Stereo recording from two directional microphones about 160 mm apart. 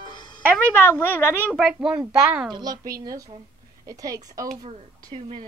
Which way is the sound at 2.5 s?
25° right (ahead or behind).